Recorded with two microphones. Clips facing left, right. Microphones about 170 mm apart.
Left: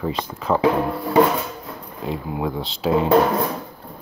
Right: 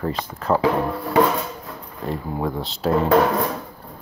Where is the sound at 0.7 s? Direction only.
10° left (ahead or behind).